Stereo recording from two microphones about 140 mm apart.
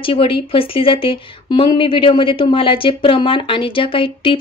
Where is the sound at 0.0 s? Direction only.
40° left (ahead or behind).